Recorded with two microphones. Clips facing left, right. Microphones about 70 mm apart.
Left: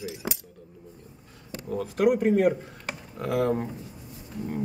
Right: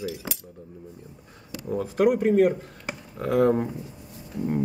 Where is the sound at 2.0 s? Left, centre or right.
Centre.